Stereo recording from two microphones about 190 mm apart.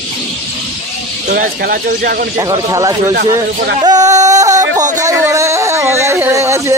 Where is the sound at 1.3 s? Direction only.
50° right (ahead or behind).